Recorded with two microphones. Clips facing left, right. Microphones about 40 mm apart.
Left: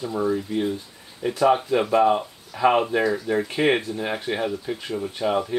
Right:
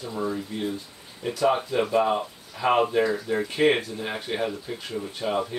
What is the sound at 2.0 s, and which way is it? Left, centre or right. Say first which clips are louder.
Speech: left 5 dB; centre.